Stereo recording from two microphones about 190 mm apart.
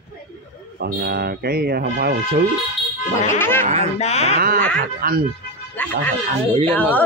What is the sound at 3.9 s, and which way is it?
Speech, 35° left (ahead or behind).